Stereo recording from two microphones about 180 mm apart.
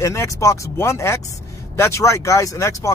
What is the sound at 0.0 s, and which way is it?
Speech, 15° left (ahead or behind).